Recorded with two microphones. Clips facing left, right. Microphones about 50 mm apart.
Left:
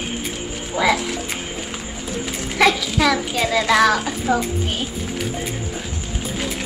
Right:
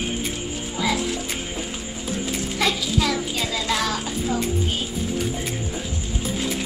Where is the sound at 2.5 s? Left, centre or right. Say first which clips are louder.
Left 7 dB; left.